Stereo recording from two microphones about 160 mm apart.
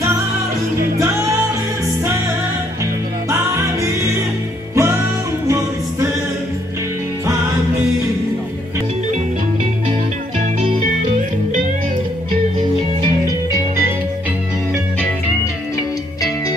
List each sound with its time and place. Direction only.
3.3 s music: 20° right (ahead or behind)